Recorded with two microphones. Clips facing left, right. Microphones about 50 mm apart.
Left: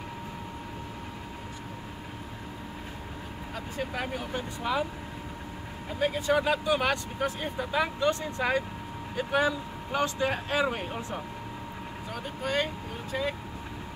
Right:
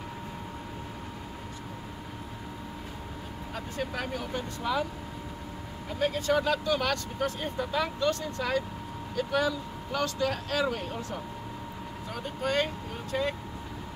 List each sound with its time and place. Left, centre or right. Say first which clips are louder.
3.7 s speech: left 1 dB; centre
5.9 s speech: left 1 dB; centre
12.4 s speech: right 1 dB; centre